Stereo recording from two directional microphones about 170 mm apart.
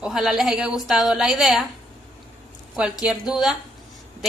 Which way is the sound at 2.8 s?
5° right (ahead or behind).